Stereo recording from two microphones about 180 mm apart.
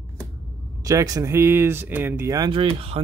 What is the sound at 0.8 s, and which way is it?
Speech, 20° right (ahead or behind).